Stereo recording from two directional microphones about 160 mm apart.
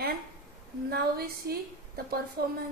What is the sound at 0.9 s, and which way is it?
Speech, 75° right (ahead or behind).